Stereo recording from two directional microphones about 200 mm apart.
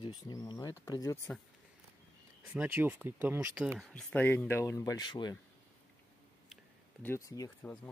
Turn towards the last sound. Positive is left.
turn(degrees=15)  # may be behind; listen again after turning